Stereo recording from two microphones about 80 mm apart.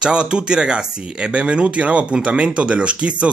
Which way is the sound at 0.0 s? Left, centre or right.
Centre.